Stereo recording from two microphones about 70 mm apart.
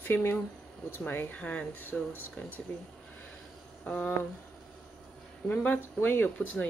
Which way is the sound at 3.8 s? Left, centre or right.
Centre.